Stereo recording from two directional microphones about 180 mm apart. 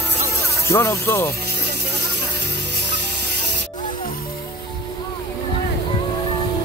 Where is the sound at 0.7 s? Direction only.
15° left (ahead or behind).